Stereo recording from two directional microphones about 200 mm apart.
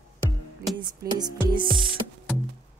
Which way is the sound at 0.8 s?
20° right (ahead or behind).